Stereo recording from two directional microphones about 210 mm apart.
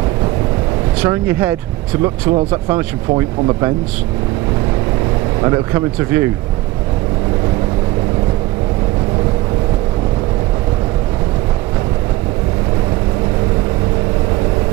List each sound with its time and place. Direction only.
1.0 s speech: 10° right (ahead or behind)
5.4 s speech: 15° right (ahead or behind)